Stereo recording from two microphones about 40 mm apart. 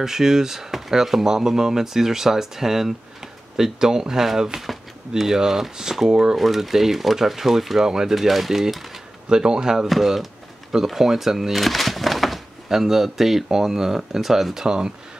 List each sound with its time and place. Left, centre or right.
0.0 s speech: centre
4.6 s speech: centre
6.3 s speech: centre
9.3 s speech: centre
9.8 s speech: centre
11.6 s a sound: centre
12.6 s speech: centre